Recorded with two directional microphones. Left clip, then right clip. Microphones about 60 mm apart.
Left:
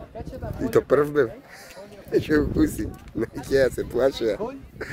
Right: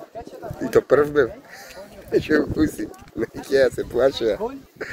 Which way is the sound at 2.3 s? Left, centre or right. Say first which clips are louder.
Right 1 dB; left.